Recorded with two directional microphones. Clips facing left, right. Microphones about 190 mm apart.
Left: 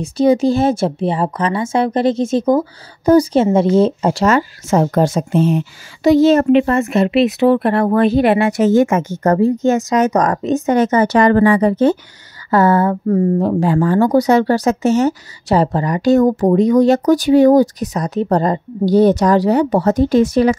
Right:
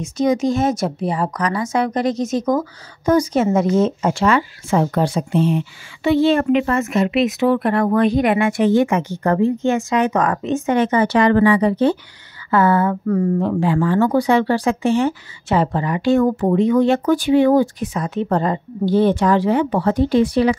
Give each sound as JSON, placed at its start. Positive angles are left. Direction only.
{"t": 0.0, "sound": "speech", "side_deg": 30}